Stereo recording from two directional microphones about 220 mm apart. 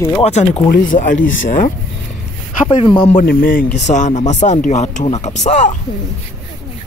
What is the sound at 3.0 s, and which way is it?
Speech, 30° left (ahead or behind).